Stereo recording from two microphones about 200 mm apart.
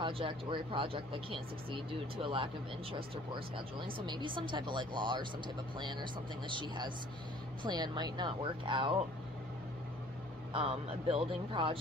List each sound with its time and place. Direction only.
0.0 s speech: 25° right (ahead or behind)
10.5 s speech: 30° right (ahead or behind)